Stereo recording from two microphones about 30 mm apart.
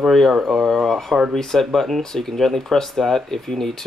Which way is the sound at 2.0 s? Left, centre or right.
Centre.